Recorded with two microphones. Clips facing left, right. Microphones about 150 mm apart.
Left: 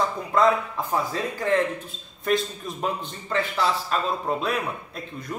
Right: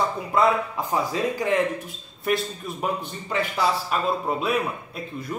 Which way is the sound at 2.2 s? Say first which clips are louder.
Left 1 dB; 5° right (ahead or behind).